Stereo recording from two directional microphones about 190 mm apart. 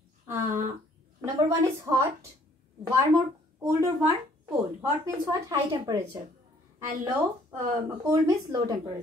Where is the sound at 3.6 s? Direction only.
20° right (ahead or behind).